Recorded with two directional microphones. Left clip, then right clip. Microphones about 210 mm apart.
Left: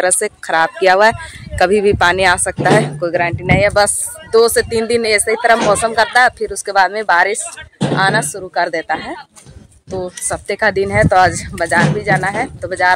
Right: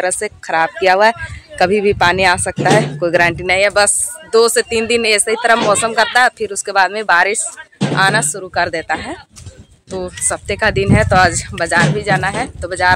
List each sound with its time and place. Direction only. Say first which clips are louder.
0.2 s speech: left 1 dB; centre (ahead or behind)
3.1 s speech: right 4 dB; 50° right (ahead or behind)
3.4 s speech: even; 10° right (ahead or behind)